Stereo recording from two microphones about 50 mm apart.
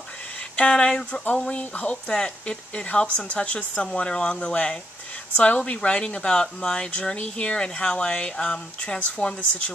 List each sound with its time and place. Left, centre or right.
0.6 s speech: centre
1.4 s speech: left
2.0 s speech: centre